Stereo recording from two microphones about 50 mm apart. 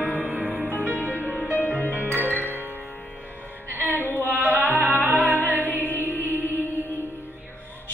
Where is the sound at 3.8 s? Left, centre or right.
Right.